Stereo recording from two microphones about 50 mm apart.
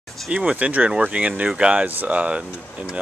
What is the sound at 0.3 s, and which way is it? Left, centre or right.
Speech, right.